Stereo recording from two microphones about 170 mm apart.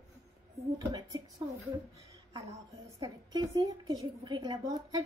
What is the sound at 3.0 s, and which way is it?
A woman's voice, 20° right (ahead or behind).